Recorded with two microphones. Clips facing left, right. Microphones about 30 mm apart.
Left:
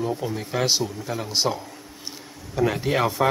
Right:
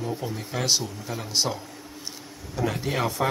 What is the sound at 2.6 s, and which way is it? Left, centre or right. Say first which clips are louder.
Speech: left 5 dB; centre.